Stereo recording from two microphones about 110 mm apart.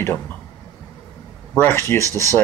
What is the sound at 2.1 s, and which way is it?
Speech, 30° right (ahead or behind).